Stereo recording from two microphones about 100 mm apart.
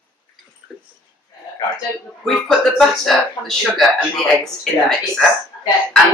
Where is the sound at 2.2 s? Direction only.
Centre (ahead or behind).